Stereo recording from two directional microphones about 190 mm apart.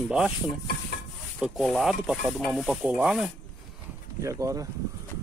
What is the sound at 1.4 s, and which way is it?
Stir, centre (ahead or behind).